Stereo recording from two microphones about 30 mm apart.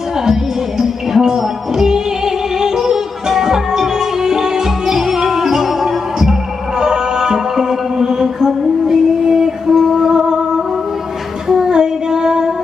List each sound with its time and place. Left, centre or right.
0.2 s music: centre
11.4 s child singing: centre